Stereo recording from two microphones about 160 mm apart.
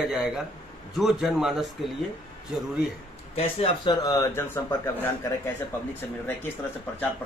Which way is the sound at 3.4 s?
35° left (ahead or behind).